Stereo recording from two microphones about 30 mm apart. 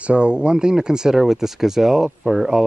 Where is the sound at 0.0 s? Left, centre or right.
Right.